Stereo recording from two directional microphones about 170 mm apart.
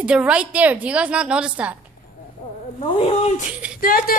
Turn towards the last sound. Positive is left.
turn(degrees=60)  # may be behind; listen again after turning